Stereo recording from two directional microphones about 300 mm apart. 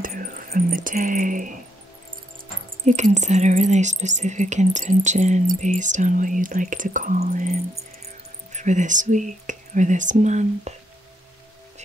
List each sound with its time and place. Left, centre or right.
0.0 s speech: right
2.8 s speech: right